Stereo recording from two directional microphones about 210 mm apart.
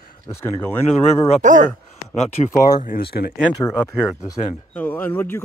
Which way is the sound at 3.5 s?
15° left (ahead or behind).